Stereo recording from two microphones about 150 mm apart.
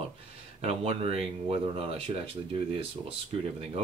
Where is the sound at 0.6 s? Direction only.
40° right (ahead or behind).